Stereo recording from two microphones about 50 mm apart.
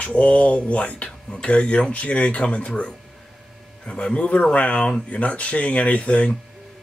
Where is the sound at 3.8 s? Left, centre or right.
Centre.